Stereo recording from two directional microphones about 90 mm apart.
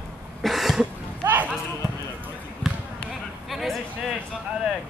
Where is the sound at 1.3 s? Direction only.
20° right (ahead or behind).